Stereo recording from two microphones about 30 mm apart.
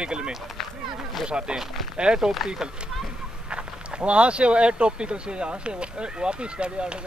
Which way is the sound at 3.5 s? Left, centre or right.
Right.